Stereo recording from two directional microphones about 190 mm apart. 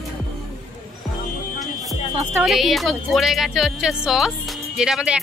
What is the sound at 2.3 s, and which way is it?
Speech, 5° right (ahead or behind).